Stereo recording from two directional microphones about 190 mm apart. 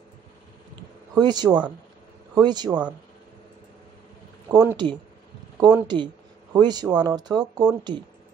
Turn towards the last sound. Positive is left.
turn(degrees=-20)  # may be behind; listen again after turning